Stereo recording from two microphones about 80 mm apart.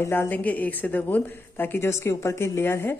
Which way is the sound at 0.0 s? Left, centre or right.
Left.